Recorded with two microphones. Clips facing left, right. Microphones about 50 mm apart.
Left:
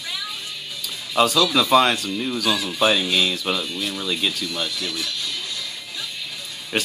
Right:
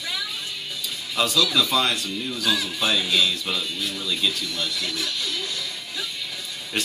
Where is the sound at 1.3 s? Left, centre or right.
Centre.